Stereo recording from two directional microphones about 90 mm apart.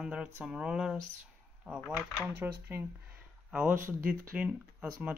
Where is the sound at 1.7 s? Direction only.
10° left (ahead or behind).